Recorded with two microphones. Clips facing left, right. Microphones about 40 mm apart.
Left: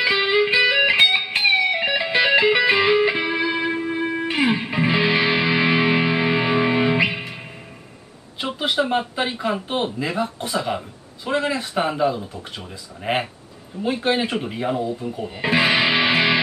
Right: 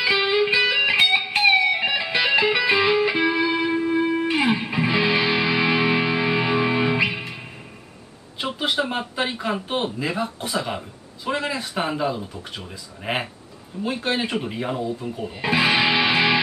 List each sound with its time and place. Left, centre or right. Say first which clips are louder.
0.0 s music: left 1 dB; centre
2.1 s music: left 4 dB; centre
2.9 s music: left 1 dB; centre
8.4 s speech: left 2 dB; centre
13.8 s speech: left 3 dB; centre
15.2 s speech: left 1 dB; centre
16.0 s music: left 1 dB; centre